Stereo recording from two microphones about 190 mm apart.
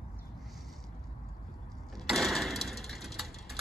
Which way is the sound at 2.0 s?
Centre (ahead or behind).